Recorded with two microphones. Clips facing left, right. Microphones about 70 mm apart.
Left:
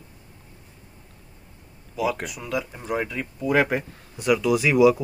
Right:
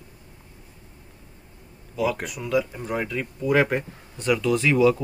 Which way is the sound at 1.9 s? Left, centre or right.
Centre.